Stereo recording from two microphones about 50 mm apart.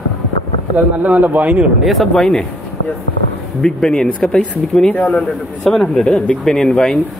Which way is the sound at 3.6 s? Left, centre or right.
Centre.